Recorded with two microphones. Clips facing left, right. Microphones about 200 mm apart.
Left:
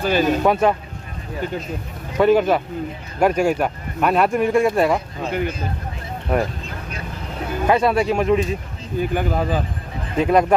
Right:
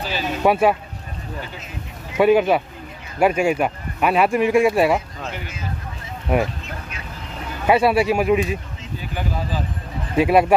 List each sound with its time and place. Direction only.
0.0 s speech: 50° left (ahead or behind)
0.4 s speech: 5° right (ahead or behind)
2.1 s speech: 5° right (ahead or behind)
7.6 s speech: 10° right (ahead or behind)
9.0 s speech: 55° left (ahead or behind)
10.1 s speech: 10° right (ahead or behind)